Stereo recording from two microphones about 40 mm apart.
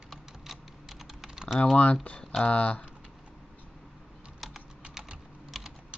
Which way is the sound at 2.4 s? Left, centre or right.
Left.